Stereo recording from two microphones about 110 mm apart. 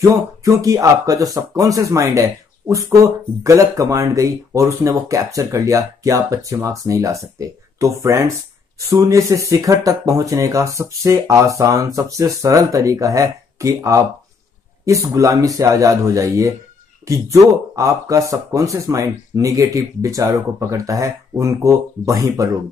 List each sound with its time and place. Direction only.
0.1 s speech: 30° right (ahead or behind)